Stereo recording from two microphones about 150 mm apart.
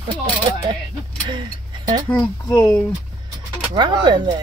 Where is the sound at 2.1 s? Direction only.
10° left (ahead or behind).